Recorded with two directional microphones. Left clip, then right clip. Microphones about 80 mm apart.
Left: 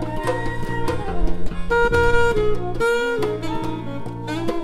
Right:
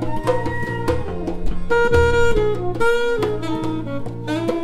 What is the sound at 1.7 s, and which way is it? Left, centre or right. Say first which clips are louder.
Music: right 1 dB; centre.